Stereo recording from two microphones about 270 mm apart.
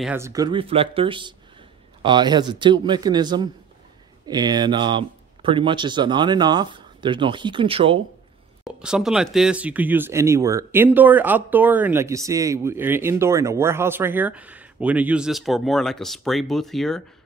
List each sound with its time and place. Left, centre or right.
0.0 s speech: centre
8.6 s speech: centre